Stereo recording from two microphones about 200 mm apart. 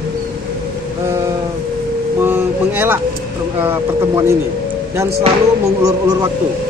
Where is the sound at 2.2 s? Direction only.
10° right (ahead or behind).